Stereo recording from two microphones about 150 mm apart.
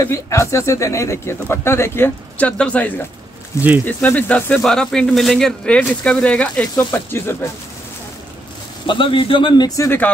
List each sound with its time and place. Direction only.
0.0 s speech: 20° left (ahead or behind)
8.8 s speech: 35° left (ahead or behind)